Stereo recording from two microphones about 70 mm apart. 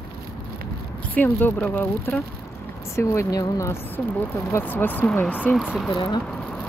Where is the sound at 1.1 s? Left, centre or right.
Left.